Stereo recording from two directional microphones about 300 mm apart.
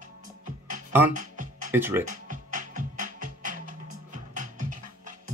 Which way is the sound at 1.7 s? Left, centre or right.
Centre.